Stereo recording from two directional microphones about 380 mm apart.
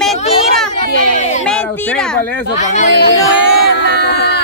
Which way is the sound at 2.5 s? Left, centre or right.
Centre.